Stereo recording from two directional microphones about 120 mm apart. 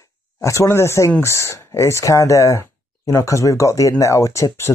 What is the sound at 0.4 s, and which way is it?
Speech, 25° left (ahead or behind).